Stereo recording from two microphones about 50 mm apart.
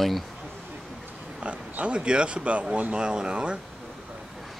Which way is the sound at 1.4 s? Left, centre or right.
Right.